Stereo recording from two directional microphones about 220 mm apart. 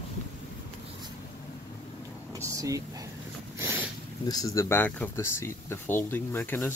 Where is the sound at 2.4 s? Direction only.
15° right (ahead or behind).